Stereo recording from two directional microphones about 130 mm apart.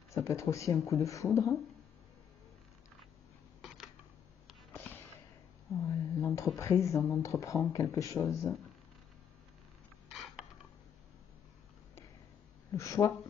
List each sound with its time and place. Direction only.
0.1 s speech: 20° left (ahead or behind)
3.6 s camera: centre (ahead or behind)
4.7 s sniff: 20° left (ahead or behind)
5.9 s speech: 25° left (ahead or behind)
10.1 s a sound: centre (ahead or behind)
12.7 s speech: 25° left (ahead or behind)